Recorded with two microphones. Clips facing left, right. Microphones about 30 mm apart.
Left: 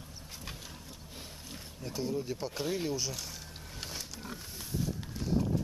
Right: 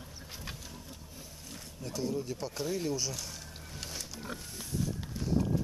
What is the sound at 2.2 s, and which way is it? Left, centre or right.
Speech, centre.